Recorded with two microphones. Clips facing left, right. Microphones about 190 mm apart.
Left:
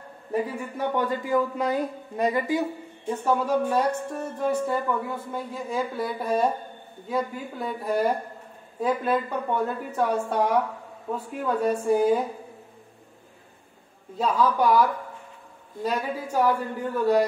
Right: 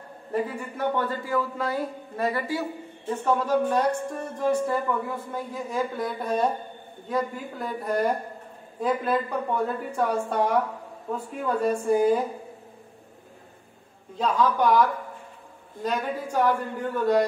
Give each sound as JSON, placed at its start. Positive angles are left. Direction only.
{"t": 0.3, "sound": "a man's voice", "side_deg": 15}
{"t": 14.1, "sound": "a man's voice", "side_deg": 5}